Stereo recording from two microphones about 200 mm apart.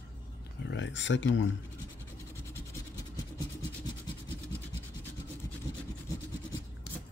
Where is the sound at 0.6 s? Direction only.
65° left (ahead or behind).